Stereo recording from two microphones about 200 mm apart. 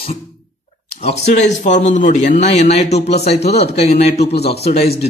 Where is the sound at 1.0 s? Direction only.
35° left (ahead or behind).